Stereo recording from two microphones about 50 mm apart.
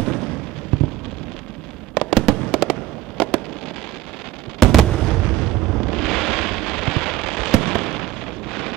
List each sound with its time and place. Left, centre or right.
0.0 s fireworks: centre
0.7 s rain: centre
2.0 s fireworks: centre
4.6 s artillery fire: centre
5.2 s explosion: centre